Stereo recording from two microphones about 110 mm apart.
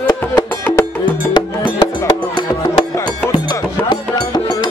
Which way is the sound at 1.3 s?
45° left (ahead or behind).